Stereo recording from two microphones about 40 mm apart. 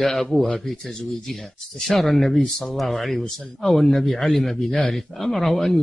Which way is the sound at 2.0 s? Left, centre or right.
Centre.